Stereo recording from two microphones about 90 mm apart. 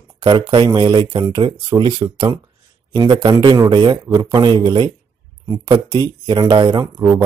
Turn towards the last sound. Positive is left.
turn(degrees=-65)  # may be behind; listen again after turning